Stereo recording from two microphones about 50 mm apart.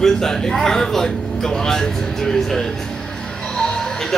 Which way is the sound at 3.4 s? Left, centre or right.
Centre.